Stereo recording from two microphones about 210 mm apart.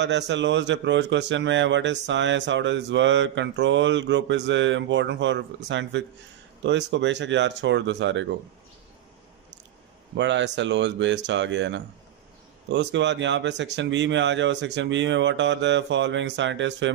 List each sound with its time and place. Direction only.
0.0 s a man's voice: 55° right (ahead or behind)
10.1 s a man's voice: 60° right (ahead or behind)